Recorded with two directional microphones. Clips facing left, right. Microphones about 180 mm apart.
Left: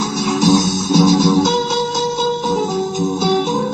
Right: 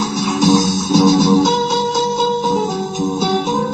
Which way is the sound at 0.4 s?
30° right (ahead or behind).